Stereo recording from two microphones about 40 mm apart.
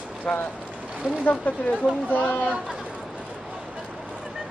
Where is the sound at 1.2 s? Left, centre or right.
Left.